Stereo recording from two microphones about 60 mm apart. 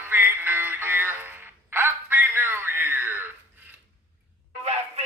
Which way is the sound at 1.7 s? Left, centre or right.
Right.